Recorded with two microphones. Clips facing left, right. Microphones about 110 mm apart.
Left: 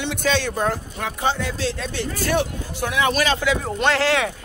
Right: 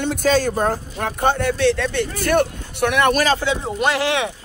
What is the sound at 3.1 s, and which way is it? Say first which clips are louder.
Speech: right 3 dB; 40° right (ahead or behind).